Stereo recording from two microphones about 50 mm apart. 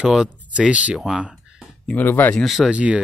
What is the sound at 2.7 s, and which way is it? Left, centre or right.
Speech, right.